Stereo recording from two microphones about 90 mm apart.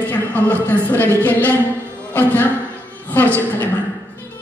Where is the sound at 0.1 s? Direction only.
20° left (ahead or behind).